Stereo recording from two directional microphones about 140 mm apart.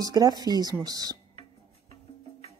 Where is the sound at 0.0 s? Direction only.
25° right (ahead or behind).